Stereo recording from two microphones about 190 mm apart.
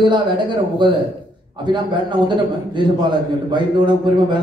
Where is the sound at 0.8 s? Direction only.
25° right (ahead or behind).